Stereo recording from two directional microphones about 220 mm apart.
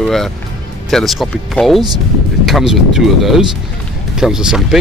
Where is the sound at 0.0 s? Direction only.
Centre (ahead or behind).